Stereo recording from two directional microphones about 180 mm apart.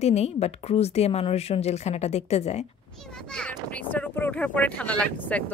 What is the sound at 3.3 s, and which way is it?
Speech, 5° left (ahead or behind).